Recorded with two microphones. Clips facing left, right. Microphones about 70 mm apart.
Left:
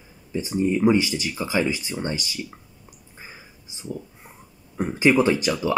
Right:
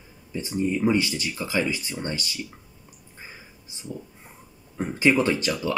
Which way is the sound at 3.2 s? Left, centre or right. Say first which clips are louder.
Left 1 dB; centre.